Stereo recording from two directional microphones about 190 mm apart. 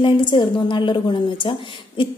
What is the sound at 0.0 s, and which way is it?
A woman's voice, 25° left (ahead or behind).